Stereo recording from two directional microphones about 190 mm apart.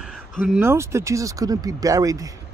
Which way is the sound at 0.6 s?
15° right (ahead or behind).